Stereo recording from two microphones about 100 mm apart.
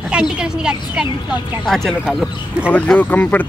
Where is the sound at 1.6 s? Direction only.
5° left (ahead or behind).